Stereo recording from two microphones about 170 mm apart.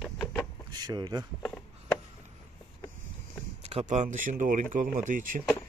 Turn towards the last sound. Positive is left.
turn(degrees=-50)  # may be behind; listen again after turning